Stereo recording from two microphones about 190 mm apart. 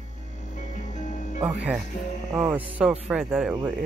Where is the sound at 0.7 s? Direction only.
40° left (ahead or behind).